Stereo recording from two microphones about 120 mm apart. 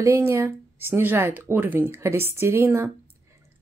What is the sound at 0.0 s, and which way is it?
Speech, 20° right (ahead or behind).